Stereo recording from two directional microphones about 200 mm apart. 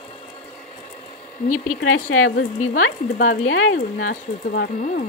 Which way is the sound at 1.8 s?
85° left.